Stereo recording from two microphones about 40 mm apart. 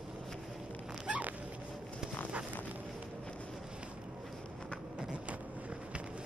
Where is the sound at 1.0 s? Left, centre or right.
Right.